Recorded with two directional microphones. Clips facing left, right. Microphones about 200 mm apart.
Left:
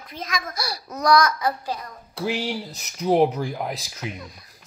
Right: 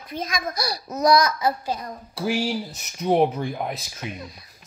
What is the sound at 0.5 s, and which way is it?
Speech, 20° right (ahead or behind).